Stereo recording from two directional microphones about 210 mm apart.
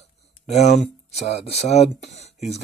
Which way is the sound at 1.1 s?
30° left (ahead or behind).